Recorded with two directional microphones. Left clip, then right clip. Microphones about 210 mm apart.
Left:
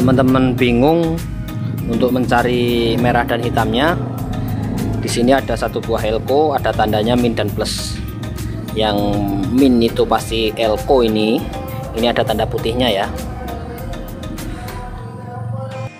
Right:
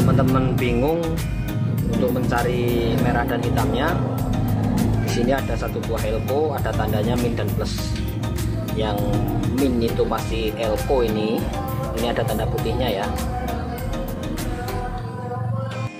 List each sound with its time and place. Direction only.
0.0 s speech: 50° left (ahead or behind)
2.1 s speech: 50° left (ahead or behind)
5.0 s speech: 55° left (ahead or behind)
8.7 s speech: 55° left (ahead or behind)